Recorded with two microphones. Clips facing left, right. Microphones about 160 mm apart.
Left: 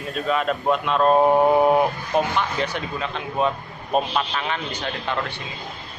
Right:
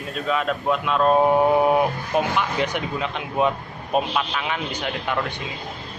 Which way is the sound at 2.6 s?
15° right (ahead or behind).